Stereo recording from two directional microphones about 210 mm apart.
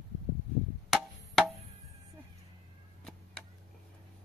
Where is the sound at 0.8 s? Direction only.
Centre (ahead or behind).